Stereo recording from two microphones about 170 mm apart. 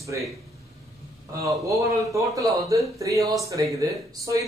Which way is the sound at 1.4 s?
20° right (ahead or behind).